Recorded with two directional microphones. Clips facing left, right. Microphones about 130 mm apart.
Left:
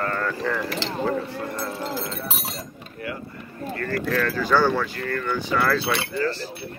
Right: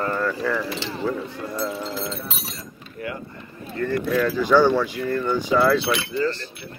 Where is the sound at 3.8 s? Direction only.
15° right (ahead or behind).